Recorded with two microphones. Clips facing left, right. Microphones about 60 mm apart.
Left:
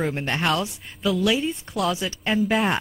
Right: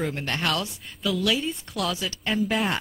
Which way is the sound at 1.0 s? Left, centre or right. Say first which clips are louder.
Left 3 dB; centre.